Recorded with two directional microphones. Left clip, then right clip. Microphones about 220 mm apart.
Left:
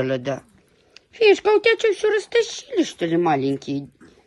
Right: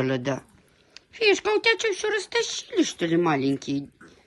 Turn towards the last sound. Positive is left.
turn(degrees=-5)  # may be behind; listen again after turning